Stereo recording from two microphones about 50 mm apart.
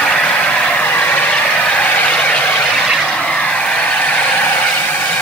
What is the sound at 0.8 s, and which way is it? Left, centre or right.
Vehicle, left.